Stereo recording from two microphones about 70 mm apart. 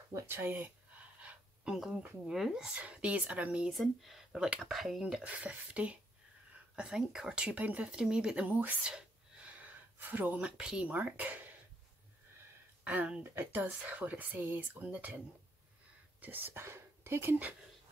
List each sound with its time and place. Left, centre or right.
0.1 s a sound: right
1.7 s speech: centre
2.7 s speech: centre
4.0 s speech: centre
4.4 s speech: centre
5.0 s speech: centre
12.8 s speech: right